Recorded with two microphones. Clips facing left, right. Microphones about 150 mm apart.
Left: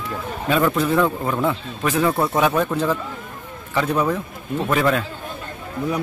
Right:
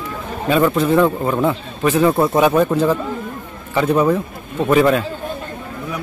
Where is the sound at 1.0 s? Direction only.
20° right (ahead or behind).